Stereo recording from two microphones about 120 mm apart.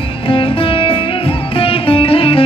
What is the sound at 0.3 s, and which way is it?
Music, 50° left (ahead or behind).